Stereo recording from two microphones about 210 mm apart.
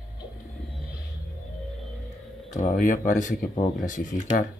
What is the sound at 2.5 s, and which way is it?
Speech, 40° left (ahead or behind).